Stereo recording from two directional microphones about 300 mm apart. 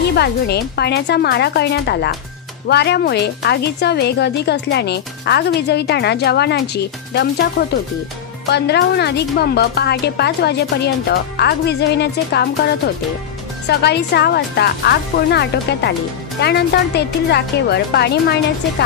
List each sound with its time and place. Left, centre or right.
0.1 s a woman's voice: left
8.5 s a woman's voice: left
13.7 s a woman's voice: left